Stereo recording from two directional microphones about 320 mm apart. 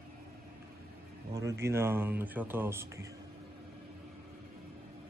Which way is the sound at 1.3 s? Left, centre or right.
Centre.